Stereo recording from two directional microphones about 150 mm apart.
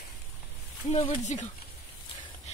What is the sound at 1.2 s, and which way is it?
Speech, 50° left (ahead or behind).